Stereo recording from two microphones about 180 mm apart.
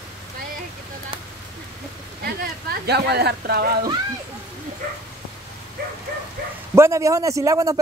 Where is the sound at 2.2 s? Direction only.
60° right (ahead or behind).